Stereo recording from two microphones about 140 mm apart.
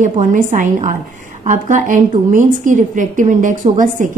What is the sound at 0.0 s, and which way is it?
A woman's voice, 65° right (ahead or behind).